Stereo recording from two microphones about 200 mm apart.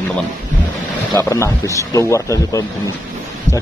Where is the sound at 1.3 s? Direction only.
15° left (ahead or behind).